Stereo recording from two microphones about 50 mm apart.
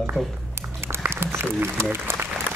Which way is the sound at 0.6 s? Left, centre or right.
Right.